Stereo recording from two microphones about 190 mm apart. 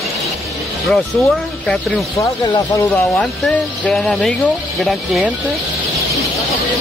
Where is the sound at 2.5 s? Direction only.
15° left (ahead or behind).